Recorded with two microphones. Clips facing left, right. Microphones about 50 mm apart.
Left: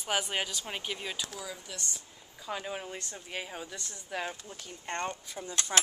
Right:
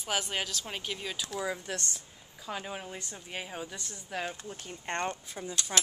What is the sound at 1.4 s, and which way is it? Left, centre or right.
Speech, right.